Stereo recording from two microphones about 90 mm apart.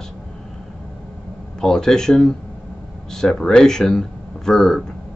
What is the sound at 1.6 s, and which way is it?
Speech, 5° left (ahead or behind).